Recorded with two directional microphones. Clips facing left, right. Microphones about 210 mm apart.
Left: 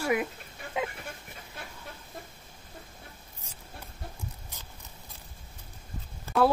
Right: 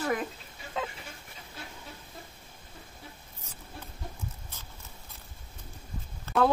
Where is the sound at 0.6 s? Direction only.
55° left (ahead or behind).